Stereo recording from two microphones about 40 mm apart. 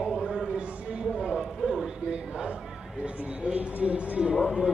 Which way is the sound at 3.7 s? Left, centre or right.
Right.